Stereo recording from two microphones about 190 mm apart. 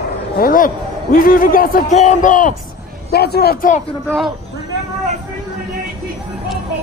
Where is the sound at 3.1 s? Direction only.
55° left (ahead or behind).